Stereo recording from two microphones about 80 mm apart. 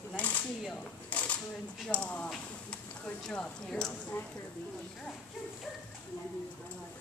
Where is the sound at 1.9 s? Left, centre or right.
Centre.